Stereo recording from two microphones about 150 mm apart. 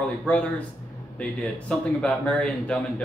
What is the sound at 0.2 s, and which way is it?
Speech, 10° left (ahead or behind).